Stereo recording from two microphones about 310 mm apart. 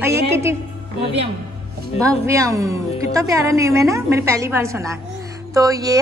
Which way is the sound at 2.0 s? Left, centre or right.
Centre.